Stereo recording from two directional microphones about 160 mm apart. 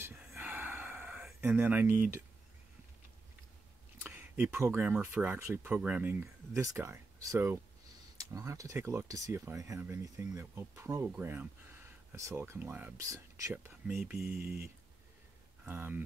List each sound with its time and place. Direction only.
0.3 s a sound: 10° right (ahead or behind)
4.0 s speech: 10° right (ahead or behind)
13.8 s speech: 10° right (ahead or behind)